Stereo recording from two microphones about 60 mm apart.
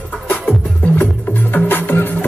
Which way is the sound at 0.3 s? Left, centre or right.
Centre.